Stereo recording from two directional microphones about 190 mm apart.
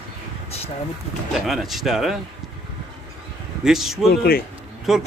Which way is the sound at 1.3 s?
Centre (ahead or behind).